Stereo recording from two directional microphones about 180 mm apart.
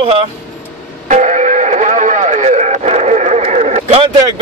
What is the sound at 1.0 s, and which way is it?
Radio, 40° right (ahead or behind).